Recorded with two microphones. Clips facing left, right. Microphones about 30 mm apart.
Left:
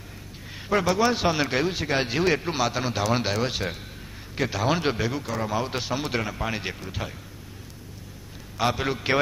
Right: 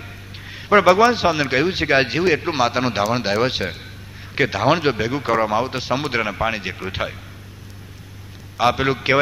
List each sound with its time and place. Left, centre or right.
0.5 s a sound: right
0.7 s speech: right
1.0 s a man's voice: centre
2.1 s a man's voice: centre
3.0 s speech: centre
3.3 s a man's voice: right
5.2 s speech: right
5.5 s a man's voice: centre
6.8 s speech: right
8.5 s a man's voice: right